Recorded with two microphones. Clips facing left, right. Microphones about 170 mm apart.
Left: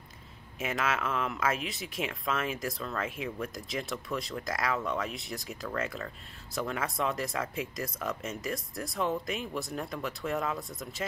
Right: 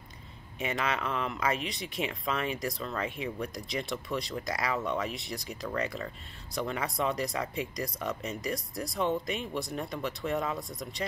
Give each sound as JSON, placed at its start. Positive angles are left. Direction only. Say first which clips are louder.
{"t": 0.6, "sound": "speech", "louder": "even", "side_deg": 0}